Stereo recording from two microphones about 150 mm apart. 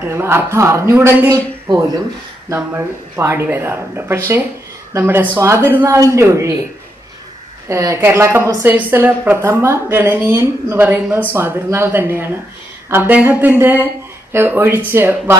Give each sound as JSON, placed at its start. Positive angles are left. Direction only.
{"t": 0.0, "sound": "a woman's voice", "side_deg": -15}
{"t": 7.6, "sound": "a woman's voice", "side_deg": -20}